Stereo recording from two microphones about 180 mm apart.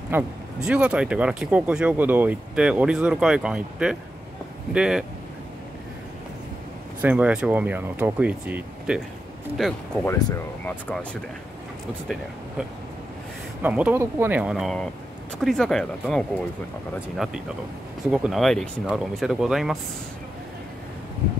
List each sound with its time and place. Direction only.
0.1 s speech: 5° right (ahead or behind)
7.0 s speech: 10° right (ahead or behind)
13.6 s speech: 10° right (ahead or behind)